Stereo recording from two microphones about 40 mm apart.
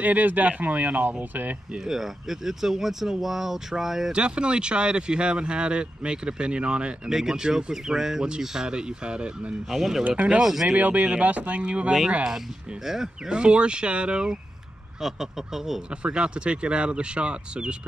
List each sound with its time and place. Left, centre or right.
0.0 s speech: right
1.9 s speech: centre
4.1 s speech: right
7.1 s speech: centre
9.7 s speech: centre
10.8 s speech: right
12.8 s speech: centre
13.3 s speech: right
15.0 s speech: centre
15.9 s speech: right